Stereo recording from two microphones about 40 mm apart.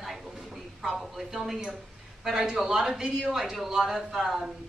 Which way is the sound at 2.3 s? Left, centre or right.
Centre.